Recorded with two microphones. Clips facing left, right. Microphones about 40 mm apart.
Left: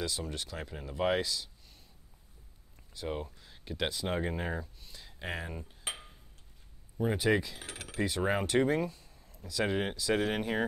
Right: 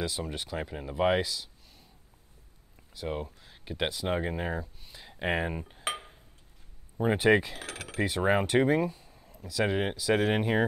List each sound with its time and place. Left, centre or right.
0.0 s speech: centre
2.9 s speech: centre; by 7.5 s right
7.5 s speech: right
8.0 s speech: centre
10.1 s speech: right